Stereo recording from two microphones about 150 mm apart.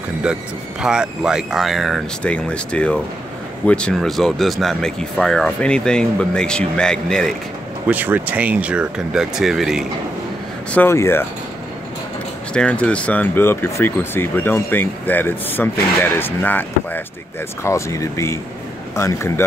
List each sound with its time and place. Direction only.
0.2 s speech: 5° right (ahead or behind)
7.9 s speech: 10° right (ahead or behind)
10.7 s speech: 15° left (ahead or behind)
12.5 s speech: 5° left (ahead or behind)